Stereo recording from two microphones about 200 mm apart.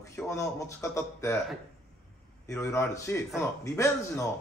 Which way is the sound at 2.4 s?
15° left (ahead or behind).